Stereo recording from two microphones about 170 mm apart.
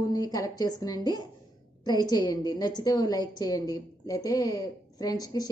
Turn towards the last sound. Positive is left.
turn(degrees=25)  # may be behind; listen again after turning